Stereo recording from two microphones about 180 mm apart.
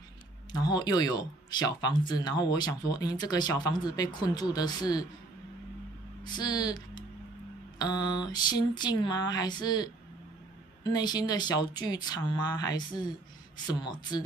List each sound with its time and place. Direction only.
0.5 s speech: 25° left (ahead or behind)
6.2 s speech: 20° left (ahead or behind)